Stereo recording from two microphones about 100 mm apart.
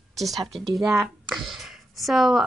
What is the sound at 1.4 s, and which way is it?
Speech, 5° right (ahead or behind).